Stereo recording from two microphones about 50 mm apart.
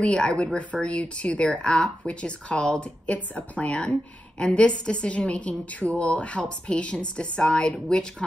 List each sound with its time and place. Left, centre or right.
0.0 s a woman's voice: centre